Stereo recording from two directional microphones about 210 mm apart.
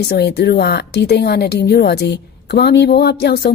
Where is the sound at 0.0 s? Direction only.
50° left (ahead or behind).